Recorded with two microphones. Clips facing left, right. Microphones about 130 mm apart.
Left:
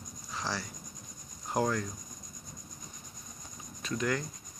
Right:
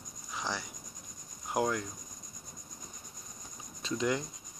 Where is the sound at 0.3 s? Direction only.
15° right (ahead or behind).